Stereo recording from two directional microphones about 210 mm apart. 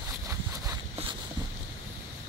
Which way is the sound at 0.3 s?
15° right (ahead or behind).